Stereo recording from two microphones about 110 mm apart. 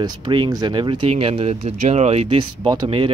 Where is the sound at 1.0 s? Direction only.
60° right (ahead or behind).